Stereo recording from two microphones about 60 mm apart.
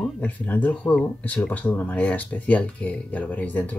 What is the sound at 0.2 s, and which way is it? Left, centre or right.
Speech, left.